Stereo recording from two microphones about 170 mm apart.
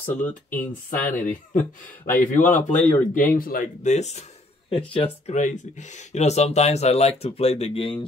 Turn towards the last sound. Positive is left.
turn(degrees=30)  # may be behind; listen again after turning